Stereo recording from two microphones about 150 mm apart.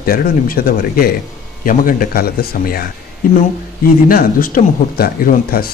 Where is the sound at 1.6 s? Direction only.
65° left (ahead or behind); by 2.8 s 85° left.